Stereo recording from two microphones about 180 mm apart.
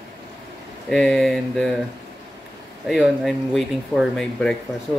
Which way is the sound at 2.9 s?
Centre (ahead or behind).